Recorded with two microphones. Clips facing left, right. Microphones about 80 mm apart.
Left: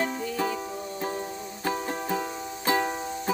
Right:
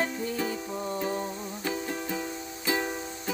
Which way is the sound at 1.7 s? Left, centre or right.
Left.